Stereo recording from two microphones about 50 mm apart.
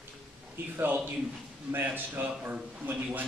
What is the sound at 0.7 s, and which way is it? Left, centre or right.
A man's voice, right.